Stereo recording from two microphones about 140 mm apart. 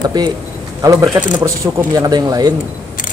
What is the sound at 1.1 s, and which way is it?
Speech, 20° right (ahead or behind).